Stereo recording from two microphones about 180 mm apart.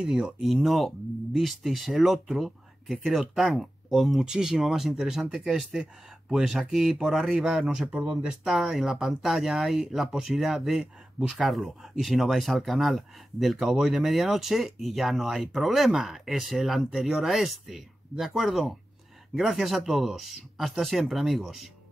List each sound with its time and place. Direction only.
0.0 s speech: 5° right (ahead or behind)